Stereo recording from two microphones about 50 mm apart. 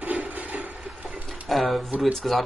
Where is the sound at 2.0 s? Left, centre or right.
Centre.